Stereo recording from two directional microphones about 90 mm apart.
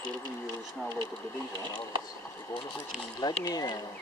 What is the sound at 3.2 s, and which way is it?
Speech, 50° left (ahead or behind).